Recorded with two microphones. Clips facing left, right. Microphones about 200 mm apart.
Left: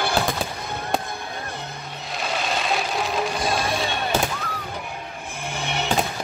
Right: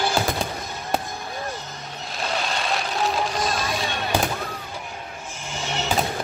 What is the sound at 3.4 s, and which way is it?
Music, 55° left (ahead or behind).